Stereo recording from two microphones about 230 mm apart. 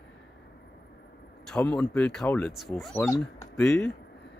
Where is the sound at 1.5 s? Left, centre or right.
Centre.